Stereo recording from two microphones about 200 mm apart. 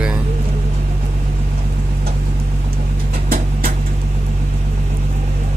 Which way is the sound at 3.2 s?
45° right (ahead or behind).